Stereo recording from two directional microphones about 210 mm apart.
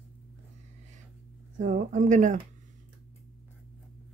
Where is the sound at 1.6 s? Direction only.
35° right (ahead or behind).